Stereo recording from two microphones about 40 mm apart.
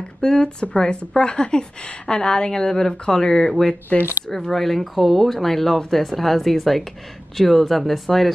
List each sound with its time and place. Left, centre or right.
0.2 s a woman's voice: centre